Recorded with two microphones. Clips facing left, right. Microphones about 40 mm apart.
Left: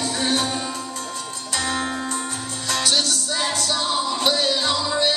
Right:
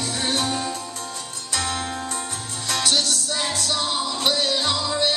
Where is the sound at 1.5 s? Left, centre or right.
Centre.